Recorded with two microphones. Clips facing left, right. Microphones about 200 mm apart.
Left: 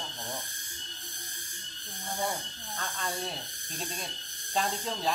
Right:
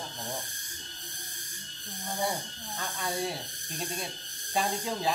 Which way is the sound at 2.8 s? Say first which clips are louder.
Right 3 dB; 10° right (ahead or behind).